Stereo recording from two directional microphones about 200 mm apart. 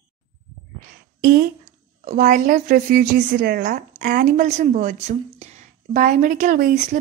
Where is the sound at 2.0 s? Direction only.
45° right (ahead or behind).